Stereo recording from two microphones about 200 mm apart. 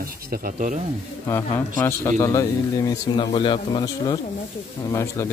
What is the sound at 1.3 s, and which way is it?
Speech, 15° left (ahead or behind).